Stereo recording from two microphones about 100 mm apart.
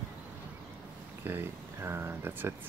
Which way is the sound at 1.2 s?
20° right (ahead or behind).